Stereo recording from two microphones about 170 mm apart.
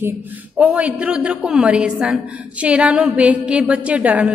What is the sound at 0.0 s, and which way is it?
A man's voice, 10° right (ahead or behind).